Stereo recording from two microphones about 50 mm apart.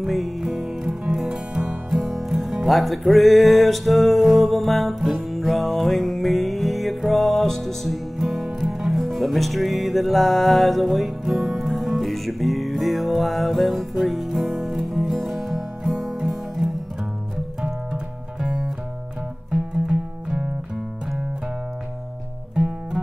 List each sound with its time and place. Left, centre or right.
0.0 s music: centre
2.0 s music: centre
8.2 s music: centre
17.9 s music: centre